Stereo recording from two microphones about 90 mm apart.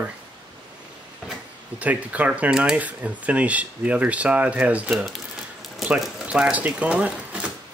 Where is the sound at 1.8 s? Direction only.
15° right (ahead or behind).